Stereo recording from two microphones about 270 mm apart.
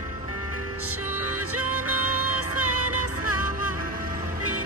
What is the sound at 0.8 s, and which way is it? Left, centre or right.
Music, right.